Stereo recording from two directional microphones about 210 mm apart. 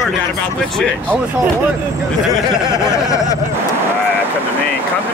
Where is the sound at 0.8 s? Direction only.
5° left (ahead or behind).